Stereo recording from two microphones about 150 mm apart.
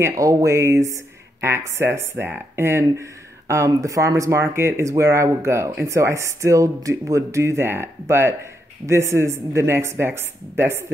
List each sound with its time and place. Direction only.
0.0 s speech: 20° right (ahead or behind)